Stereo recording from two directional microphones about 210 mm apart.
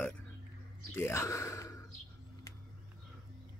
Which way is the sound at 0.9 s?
10° left (ahead or behind).